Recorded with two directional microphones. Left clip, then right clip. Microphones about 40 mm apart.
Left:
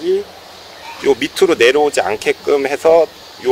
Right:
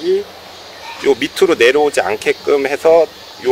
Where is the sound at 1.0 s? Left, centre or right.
Left.